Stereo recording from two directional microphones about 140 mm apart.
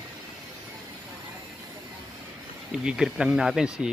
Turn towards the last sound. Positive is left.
turn(degrees=-5)  # may be behind; listen again after turning